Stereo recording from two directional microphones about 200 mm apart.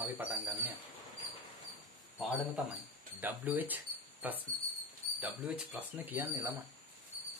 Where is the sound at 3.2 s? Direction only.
10° right (ahead or behind).